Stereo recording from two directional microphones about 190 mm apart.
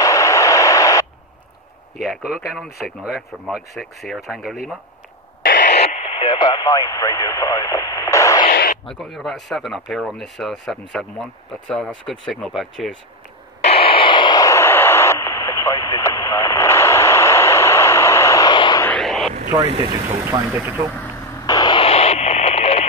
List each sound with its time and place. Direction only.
0.0 s radio: 15° left (ahead or behind)
2.0 s speech: centre (ahead or behind)
5.4 s radio: 50° left (ahead or behind)
5.9 s speech: 30° left (ahead or behind)
8.5 s speech: 50° left (ahead or behind)
9.0 s speech: centre (ahead or behind)
13.6 s radio: 30° left (ahead or behind)
18.9 s a sound: centre (ahead or behind)
20.2 s speech: 15° right (ahead or behind)
21.5 s radio: 20° left (ahead or behind)